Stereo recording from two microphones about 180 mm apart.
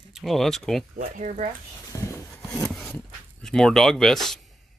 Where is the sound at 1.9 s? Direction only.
15° left (ahead or behind).